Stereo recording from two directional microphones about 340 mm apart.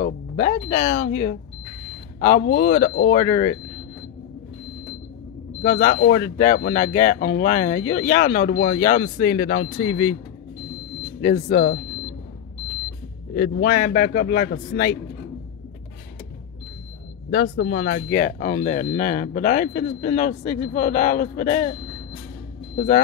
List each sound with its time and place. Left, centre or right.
0.0 s speech: centre
5.6 s speech: left
11.1 s speech: left
13.3 s speech: left
17.3 s speech: left